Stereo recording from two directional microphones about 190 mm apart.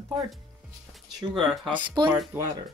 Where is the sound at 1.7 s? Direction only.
25° right (ahead or behind).